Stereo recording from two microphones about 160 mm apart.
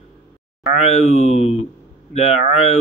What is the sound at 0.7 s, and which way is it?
Speech, 45° left (ahead or behind).